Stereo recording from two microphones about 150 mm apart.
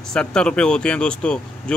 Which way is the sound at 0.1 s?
5° left (ahead or behind).